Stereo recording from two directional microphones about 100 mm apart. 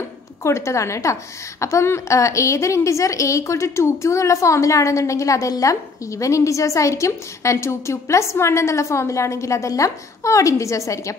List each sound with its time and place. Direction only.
0.4 s a woman's voice: 30° left (ahead or behind)